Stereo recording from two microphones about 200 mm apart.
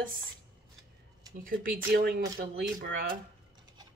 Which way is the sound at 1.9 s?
50° right (ahead or behind).